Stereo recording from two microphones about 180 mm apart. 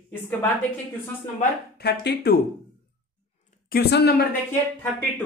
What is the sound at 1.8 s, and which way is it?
Speech, 65° left (ahead or behind).